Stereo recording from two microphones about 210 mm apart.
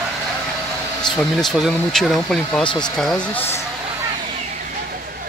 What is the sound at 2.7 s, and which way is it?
Speech, 20° left (ahead or behind).